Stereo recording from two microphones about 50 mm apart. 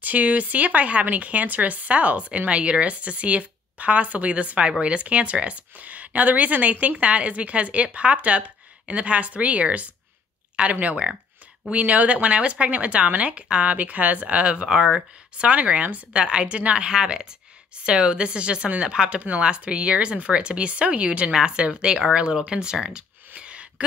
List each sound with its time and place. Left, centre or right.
0.0 s speech: right; by 15.4 s centre
15.4 s speech: right
22.8 s a sound: centre